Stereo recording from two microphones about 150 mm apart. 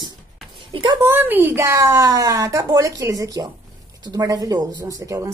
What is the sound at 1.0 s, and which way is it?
Speech, 15° right (ahead or behind).